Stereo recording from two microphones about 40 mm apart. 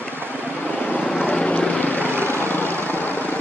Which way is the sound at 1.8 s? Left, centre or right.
Left.